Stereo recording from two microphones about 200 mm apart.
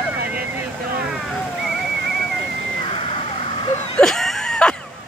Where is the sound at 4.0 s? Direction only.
Centre (ahead or behind).